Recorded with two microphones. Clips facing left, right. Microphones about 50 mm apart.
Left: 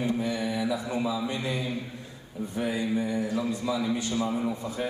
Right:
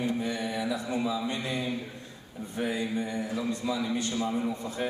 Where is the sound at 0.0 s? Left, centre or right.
Centre.